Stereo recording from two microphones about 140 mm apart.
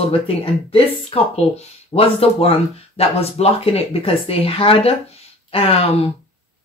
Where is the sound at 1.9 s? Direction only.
45° left (ahead or behind).